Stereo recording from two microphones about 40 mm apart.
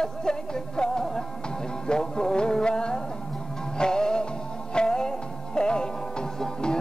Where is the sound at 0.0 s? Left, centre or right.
Centre.